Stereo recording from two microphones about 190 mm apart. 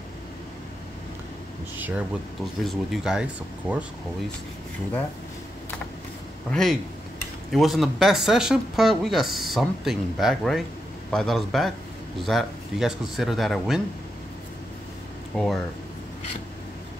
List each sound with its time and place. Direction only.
1.8 s speech: 10° right (ahead or behind)
6.5 s speech: centre (ahead or behind)
15.3 s speech: centre (ahead or behind)